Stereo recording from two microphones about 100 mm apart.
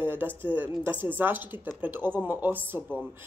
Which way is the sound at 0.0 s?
20° right (ahead or behind).